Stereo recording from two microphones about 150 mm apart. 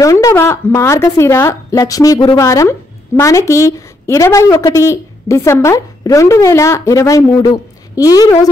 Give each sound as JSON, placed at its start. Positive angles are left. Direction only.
{"t": 0.0, "sound": "a woman's voice", "side_deg": 20}